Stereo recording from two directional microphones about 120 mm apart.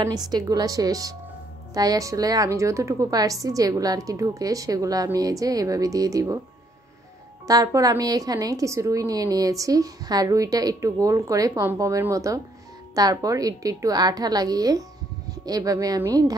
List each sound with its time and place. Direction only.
0.3 s a woman's voice: 30° right (ahead or behind)
7.4 s a woman's voice: 30° right (ahead or behind)